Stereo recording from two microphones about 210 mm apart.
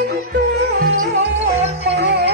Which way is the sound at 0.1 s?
50° right (ahead or behind).